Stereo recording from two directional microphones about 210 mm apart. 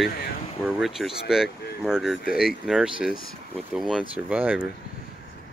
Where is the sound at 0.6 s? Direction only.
Centre (ahead or behind).